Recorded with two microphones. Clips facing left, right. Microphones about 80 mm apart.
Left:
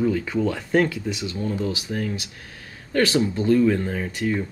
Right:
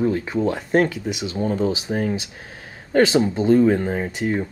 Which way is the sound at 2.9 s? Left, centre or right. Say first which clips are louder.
Right 4 dB; right.